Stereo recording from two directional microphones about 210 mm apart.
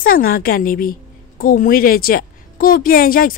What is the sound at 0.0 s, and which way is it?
A woman's voice, 45° left (ahead or behind).